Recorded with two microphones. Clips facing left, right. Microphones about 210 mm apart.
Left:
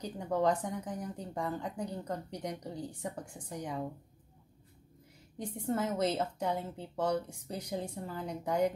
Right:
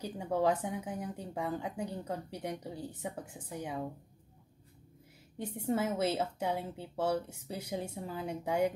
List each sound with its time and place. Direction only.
0.0 s a woman's voice: 10° right (ahead or behind)
5.4 s a woman's voice: 10° right (ahead or behind)